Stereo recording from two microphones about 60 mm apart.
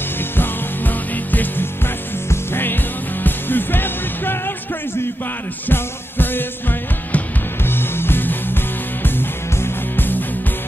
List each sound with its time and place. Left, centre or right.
0.2 s music: left
5.7 s music: left